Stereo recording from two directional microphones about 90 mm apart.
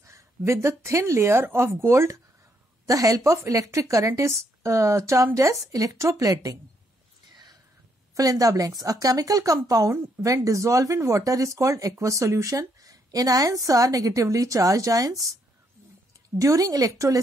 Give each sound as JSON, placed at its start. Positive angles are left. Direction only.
{"t": 0.0, "sound": "speech", "side_deg": -35}
{"t": 8.1, "sound": "speech", "side_deg": -40}
{"t": 16.3, "sound": "speech", "side_deg": -40}